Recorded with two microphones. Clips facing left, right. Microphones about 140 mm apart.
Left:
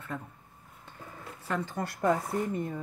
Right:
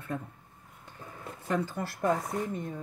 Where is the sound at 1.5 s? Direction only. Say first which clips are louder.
Right 3 dB; 10° right (ahead or behind).